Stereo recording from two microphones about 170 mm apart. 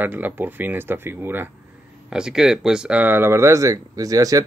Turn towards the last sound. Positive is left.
turn(degrees=-20)  # may be behind; listen again after turning